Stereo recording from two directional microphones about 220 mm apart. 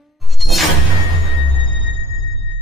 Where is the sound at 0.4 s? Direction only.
Centre (ahead or behind).